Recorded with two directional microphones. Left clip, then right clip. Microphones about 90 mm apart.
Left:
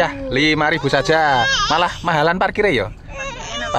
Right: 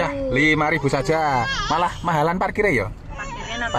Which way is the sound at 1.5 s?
15° left (ahead or behind).